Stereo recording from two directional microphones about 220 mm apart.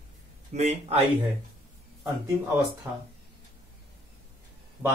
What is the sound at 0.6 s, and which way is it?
Speech, 30° right (ahead or behind).